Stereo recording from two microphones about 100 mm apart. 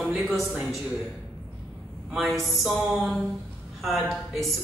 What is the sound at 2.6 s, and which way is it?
A woman's voice, centre (ahead or behind).